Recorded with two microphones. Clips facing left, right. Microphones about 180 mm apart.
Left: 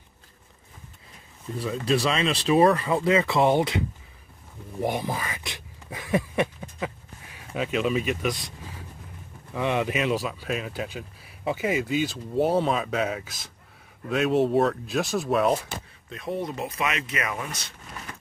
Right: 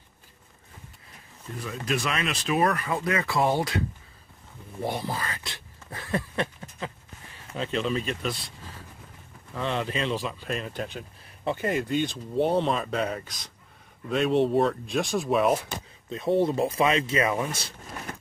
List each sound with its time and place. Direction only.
1.6 s speech: 30° left (ahead or behind)
4.8 s speech: 15° left (ahead or behind); by 15.6 s centre (ahead or behind)
16.1 s speech: 25° right (ahead or behind)